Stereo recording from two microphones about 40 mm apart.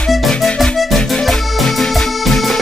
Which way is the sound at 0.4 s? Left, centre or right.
Centre.